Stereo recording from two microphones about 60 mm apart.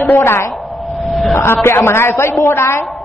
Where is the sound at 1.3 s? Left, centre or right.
Left.